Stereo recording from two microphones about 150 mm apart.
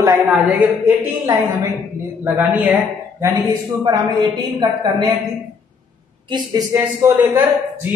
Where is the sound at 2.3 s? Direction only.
10° right (ahead or behind).